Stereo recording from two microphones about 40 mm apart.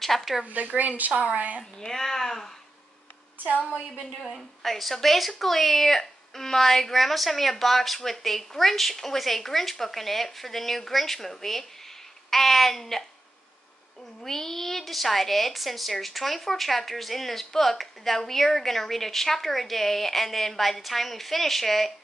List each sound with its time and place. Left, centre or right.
0.0 s a woman's voice: centre
0.7 s a woman's voice: right
1.6 s speech: centre
4.3 s speech: centre
14.2 s speech: centre